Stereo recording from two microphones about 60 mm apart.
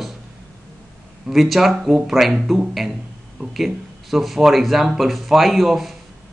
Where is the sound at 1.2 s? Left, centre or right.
Centre.